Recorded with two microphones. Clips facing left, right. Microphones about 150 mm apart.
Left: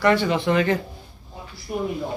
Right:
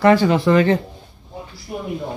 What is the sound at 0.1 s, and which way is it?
Speech, 35° right (ahead or behind).